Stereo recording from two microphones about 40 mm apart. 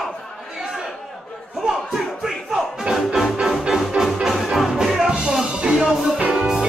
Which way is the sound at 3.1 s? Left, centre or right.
Centre.